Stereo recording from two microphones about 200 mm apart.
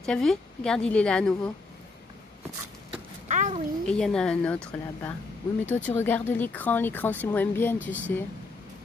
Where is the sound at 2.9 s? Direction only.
35° right (ahead or behind).